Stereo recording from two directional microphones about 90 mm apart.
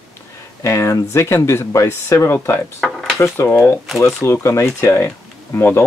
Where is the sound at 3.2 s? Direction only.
30° left (ahead or behind).